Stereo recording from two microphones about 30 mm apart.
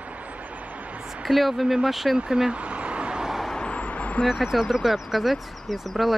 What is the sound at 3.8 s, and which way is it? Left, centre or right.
Vehicle, left.